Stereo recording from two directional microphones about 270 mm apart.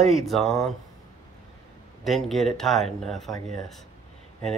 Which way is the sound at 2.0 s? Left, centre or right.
Centre.